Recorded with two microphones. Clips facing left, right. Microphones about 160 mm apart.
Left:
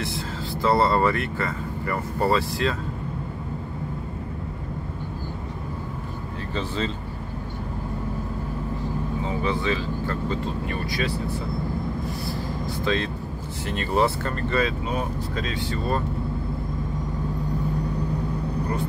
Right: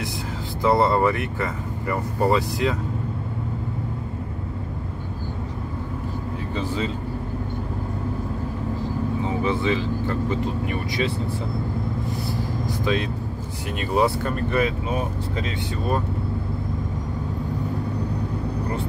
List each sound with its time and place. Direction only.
0.6 s speech: 20° right (ahead or behind)
6.5 s speech: 10° right (ahead or behind)
9.4 s speech: 20° right (ahead or behind)
12.8 s speech: 15° right (ahead or behind)